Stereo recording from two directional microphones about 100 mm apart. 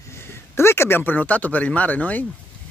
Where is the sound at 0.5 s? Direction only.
25° left (ahead or behind).